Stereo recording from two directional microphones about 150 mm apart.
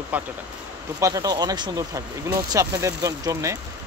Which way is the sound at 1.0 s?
20° right (ahead or behind).